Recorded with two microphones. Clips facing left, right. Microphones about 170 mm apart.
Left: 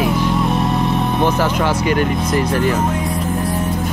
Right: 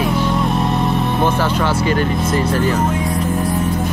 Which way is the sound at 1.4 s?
10° left (ahead or behind).